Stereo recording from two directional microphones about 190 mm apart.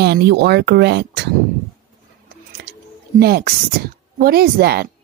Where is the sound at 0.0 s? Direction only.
60° right (ahead or behind).